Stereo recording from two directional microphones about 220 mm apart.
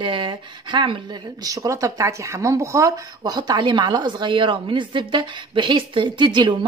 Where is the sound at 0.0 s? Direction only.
20° right (ahead or behind).